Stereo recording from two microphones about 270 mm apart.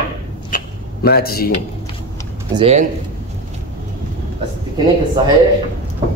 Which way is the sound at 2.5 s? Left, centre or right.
Right.